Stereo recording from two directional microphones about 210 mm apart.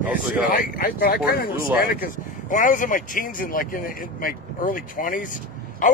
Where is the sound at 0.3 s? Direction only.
45° left (ahead or behind).